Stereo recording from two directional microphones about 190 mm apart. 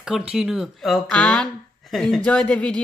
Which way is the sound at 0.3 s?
5° right (ahead or behind).